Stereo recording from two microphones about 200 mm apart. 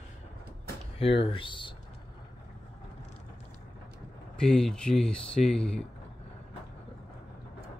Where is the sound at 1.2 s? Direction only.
25° left (ahead or behind).